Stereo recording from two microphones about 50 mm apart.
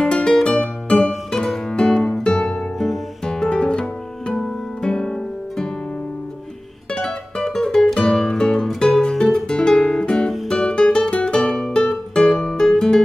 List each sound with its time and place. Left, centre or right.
0.0 s music: centre
6.9 s music: centre